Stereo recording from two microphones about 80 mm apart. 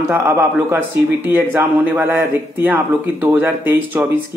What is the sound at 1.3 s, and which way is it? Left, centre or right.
A man's voice, right.